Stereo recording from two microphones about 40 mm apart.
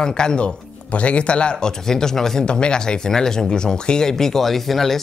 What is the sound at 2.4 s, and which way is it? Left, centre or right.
Speech, left.